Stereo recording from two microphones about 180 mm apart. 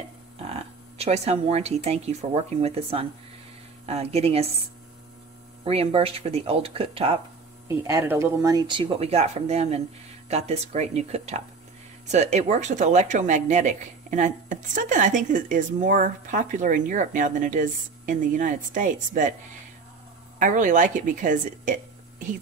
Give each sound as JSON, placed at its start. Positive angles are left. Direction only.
{"t": 0.4, "sound": "speech", "side_deg": -35}
{"t": 5.6, "sound": "speech", "side_deg": -30}
{"t": 7.6, "sound": "speech", "side_deg": -15}
{"t": 20.3, "sound": "speech", "side_deg": -45}